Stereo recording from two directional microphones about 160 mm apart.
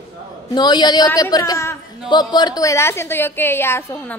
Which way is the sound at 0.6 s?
25° left (ahead or behind).